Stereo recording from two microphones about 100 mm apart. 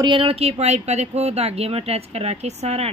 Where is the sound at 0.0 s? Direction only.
60° right (ahead or behind).